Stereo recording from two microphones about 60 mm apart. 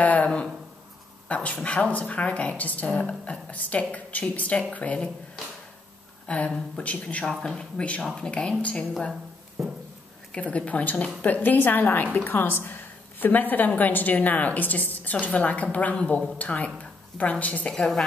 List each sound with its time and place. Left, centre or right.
0.0 s speech: left
6.2 s a woman's voice: left
7.2 s speech: centre
7.8 s speech: left
9.1 s a sound: centre
10.3 s speech: left
17.6 s speech: centre